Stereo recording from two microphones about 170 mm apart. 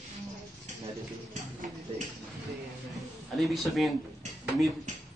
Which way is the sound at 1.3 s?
45° right (ahead or behind).